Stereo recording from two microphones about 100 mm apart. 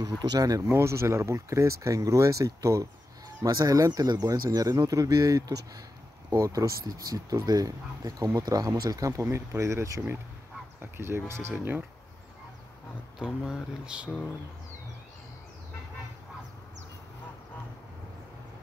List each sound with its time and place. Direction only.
0.2 s speech: 40° right (ahead or behind); by 11.8 s 20° right (ahead or behind)
13.2 s speech: 10° right (ahead or behind)